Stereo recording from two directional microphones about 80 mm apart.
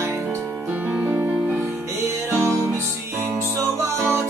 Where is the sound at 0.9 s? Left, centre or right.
Right.